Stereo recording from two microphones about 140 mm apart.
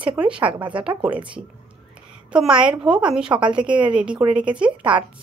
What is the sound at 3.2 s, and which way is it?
Speech, 35° right (ahead or behind).